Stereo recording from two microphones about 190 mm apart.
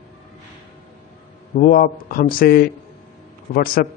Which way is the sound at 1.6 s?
50° left (ahead or behind).